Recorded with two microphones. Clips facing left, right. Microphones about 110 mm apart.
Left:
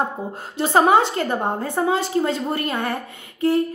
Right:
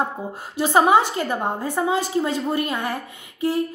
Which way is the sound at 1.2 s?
20° left (ahead or behind).